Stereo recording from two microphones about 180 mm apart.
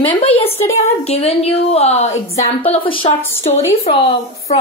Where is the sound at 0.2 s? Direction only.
30° left (ahead or behind).